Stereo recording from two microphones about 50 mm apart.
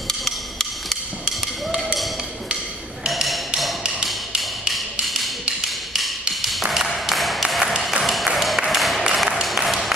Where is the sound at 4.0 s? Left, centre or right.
Centre.